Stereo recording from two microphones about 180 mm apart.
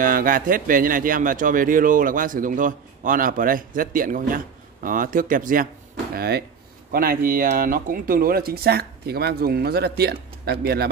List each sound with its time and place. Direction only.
0.0 s a man's voice: 50° right (ahead or behind)
6.1 s speech: 60° right (ahead or behind)